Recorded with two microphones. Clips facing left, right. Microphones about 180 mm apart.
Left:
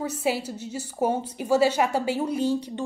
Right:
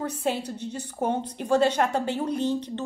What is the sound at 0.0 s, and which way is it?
A woman's voice, 5° left (ahead or behind).